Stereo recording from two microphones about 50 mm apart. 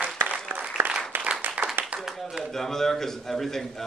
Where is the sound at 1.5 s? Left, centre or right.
Right.